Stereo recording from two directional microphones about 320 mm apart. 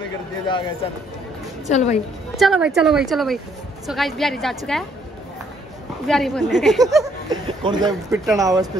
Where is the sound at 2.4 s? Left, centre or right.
Centre.